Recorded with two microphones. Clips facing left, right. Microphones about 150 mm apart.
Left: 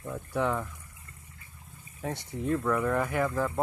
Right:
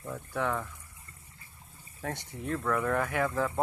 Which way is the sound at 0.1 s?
15° left (ahead or behind).